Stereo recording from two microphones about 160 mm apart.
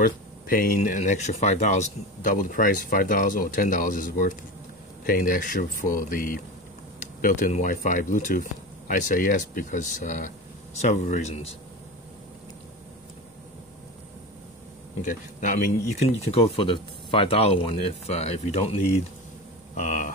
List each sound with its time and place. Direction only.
0.0 s speech: 60° left (ahead or behind); by 11.4 s 45° left (ahead or behind)
16.3 s speech: 35° left (ahead or behind)
19.7 s hum: 50° left (ahead or behind)